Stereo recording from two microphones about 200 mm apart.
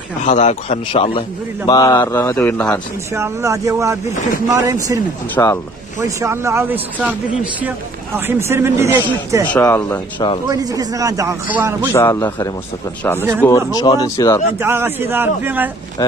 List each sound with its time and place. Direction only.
0.2 s a man's voice: 35° left (ahead or behind); by 2.8 s 10° left (ahead or behind)
3.2 s a man's voice: 15° right (ahead or behind)
5.3 s speech: 15° left (ahead or behind)
6.0 s a man's voice: 15° right (ahead or behind)
8.3 s a man's voice: 10° right (ahead or behind)
9.5 s speech: 10° left (ahead or behind)
10.1 s speech: 25° left (ahead or behind)
10.5 s a man's voice: 20° right (ahead or behind)
11.9 s speech: 15° left (ahead or behind)
14.6 s a man's voice: 10° right (ahead or behind)
16.0 s speech: 20° left (ahead or behind)